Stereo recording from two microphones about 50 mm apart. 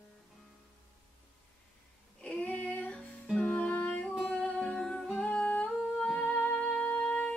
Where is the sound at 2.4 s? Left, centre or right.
Left.